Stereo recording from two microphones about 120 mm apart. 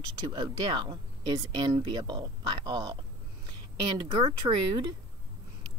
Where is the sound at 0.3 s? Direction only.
40° right (ahead or behind).